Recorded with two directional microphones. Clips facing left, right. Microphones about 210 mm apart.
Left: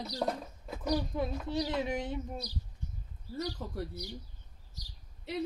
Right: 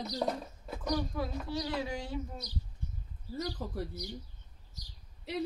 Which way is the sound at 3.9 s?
15° right (ahead or behind).